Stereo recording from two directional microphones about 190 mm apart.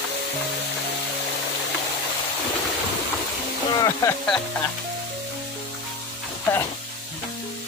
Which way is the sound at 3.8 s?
15° left (ahead or behind).